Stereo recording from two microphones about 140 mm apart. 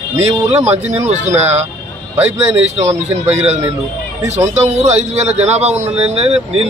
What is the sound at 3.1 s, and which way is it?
Speech, 50° right (ahead or behind).